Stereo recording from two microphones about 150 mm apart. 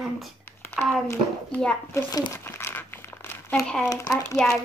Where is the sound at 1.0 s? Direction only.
15° left (ahead or behind).